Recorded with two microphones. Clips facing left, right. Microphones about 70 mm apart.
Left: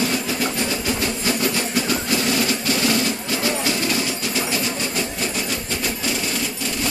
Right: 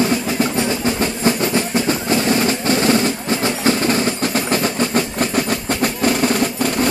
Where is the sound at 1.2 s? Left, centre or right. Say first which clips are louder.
Right 7 dB; right.